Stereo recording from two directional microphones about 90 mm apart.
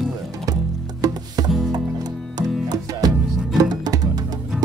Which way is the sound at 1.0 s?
45° right (ahead or behind).